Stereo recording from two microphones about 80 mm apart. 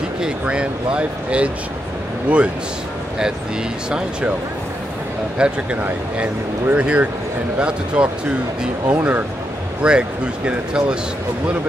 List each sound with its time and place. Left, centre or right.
0.2 s speech: centre
5.4 s speech: centre